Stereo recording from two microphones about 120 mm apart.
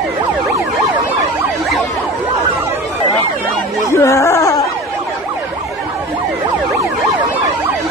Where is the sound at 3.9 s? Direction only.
25° left (ahead or behind).